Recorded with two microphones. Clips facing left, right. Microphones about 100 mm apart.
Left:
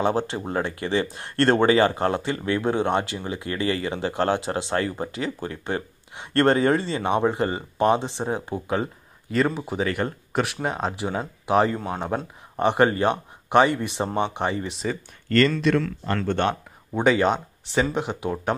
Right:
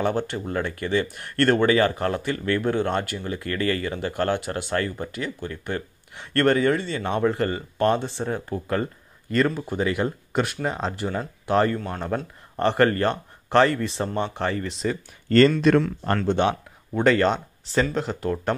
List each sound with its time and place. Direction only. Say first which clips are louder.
0.0 s speech: left 1 dB; 25° left (ahead or behind)
7.0 s speech: left 1 dB; 20° left (ahead or behind)
9.8 s speech: right 1 dB; centre (ahead or behind); by 14.7 s 15° left (ahead or behind)
15.2 s speech: right 3 dB; 30° right (ahead or behind)
15.6 s speech: right 3 dB; 40° right (ahead or behind)
16.3 s speech: right 2 dB; 10° right (ahead or behind)
17.0 s speech: even; 10° left (ahead or behind)